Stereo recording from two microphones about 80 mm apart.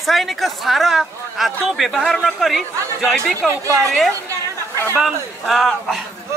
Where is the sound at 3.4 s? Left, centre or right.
Right.